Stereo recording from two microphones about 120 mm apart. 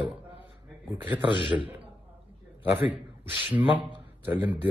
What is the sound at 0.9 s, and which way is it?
Speech, 15° right (ahead or behind).